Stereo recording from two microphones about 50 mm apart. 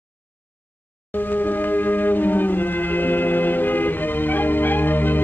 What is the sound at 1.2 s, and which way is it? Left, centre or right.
Music, left.